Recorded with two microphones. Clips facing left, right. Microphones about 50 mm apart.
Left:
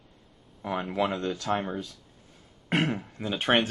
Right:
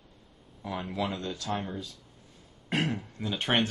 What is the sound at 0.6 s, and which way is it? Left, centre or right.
Speech, left.